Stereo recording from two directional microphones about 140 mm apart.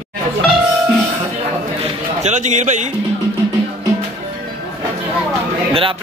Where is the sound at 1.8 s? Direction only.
55° right (ahead or behind).